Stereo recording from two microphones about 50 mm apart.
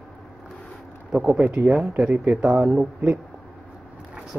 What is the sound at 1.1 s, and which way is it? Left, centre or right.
Speech, centre.